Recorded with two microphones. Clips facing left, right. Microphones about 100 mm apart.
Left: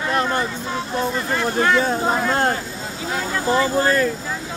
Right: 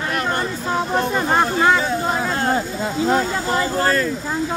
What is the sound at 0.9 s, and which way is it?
Speech, 55° right (ahead or behind).